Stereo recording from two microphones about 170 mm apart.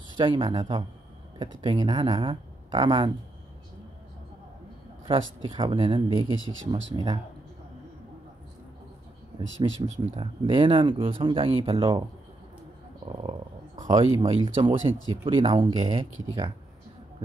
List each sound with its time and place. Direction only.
0.2 s speech: 30° right (ahead or behind)
5.0 s speech: 30° right (ahead or behind)
9.6 s speech: 25° right (ahead or behind)
13.1 s speech: 30° right (ahead or behind)